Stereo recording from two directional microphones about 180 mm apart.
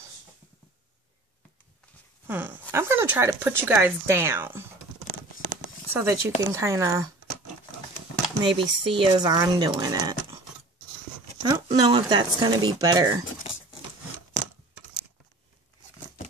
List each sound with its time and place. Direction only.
2.2 s speech: 10° right (ahead or behind)
5.9 s speech: 15° right (ahead or behind)
8.5 s speech: 30° right (ahead or behind)
11.4 s speech: 20° right (ahead or behind)